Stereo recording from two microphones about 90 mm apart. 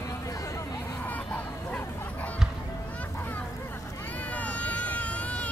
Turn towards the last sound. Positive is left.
turn(degrees=15)  # may be behind; listen again after turning